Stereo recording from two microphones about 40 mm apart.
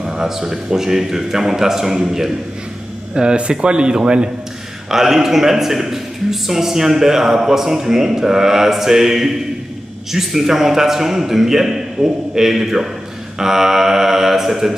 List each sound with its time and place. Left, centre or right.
0.0 s a man's voice: centre
3.2 s speech: right
4.9 s a man's voice: centre